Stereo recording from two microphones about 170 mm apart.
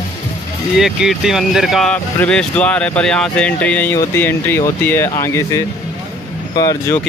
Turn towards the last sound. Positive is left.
turn(degrees=20)  # may be behind; listen again after turning